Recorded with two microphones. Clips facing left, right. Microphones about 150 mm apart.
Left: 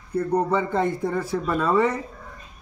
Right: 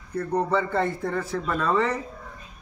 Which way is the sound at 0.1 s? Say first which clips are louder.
Left 2 dB; 10° left (ahead or behind).